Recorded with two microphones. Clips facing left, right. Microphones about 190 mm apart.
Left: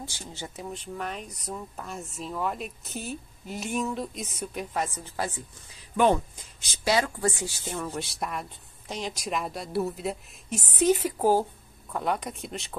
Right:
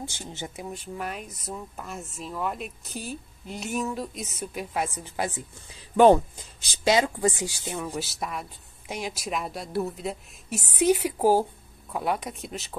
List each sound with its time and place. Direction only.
0.0 s speech: 20° right (ahead or behind)
0.7 s speech: 5° right (ahead or behind)
5.9 s speech: 35° right (ahead or behind)
6.7 s speech: 20° right (ahead or behind)
7.9 s speech: centre (ahead or behind)